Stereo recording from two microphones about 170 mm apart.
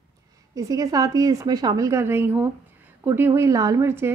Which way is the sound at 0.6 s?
20° right (ahead or behind).